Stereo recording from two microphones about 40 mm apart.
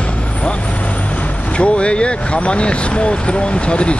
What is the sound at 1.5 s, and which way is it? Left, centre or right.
Speech, left.